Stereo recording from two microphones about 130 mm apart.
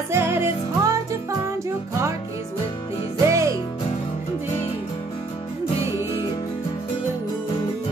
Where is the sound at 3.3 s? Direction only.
25° right (ahead or behind).